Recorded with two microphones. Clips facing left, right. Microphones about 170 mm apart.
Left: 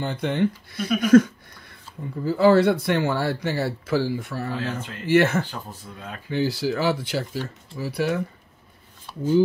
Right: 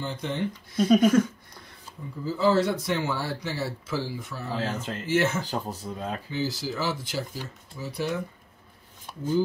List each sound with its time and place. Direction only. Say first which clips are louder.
0.0 s speech: left 6 dB; 65° left (ahead or behind)
2.2 s speech: left 6 dB; 65° left (ahead or behind)
4.6 s speech: even; 40° right (ahead or behind)
5.0 s speech: left 6 dB; 65° left (ahead or behind)
5.4 s speech: right 1 dB; 40° right (ahead or behind)
6.3 s speech: left 9 dB; 60° left (ahead or behind)